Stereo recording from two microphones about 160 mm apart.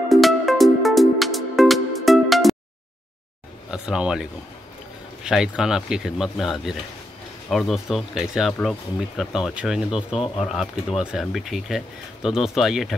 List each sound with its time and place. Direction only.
0.1 s music: centre (ahead or behind)
3.7 s speech: 5° right (ahead or behind)